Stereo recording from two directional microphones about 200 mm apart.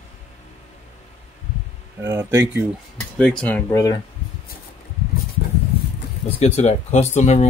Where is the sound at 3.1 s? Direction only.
5° left (ahead or behind).